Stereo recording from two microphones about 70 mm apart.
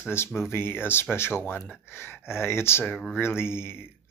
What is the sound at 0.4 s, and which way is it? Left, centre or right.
Speech, left.